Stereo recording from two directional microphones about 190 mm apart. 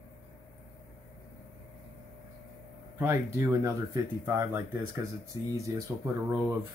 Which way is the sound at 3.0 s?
15° right (ahead or behind).